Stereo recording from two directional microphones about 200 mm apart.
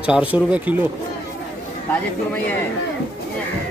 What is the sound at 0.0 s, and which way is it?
Speech, 5° right (ahead or behind).